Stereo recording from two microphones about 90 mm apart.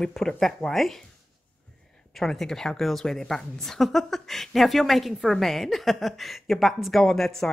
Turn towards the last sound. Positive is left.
turn(degrees=5)  # may be behind; listen again after turning